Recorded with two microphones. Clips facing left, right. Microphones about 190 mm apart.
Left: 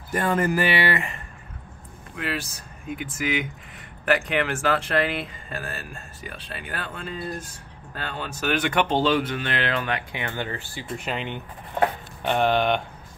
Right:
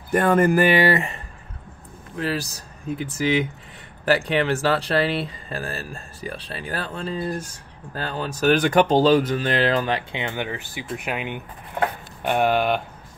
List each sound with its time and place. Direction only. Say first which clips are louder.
0.1 s speech: right 6 dB; 55° right (ahead or behind)
2.1 s speech: right 4 dB; 35° right (ahead or behind)
10.2 s speech: right 2 dB; 15° right (ahead or behind)